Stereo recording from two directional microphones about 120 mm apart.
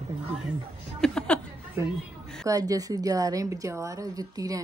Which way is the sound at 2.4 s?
30° right (ahead or behind).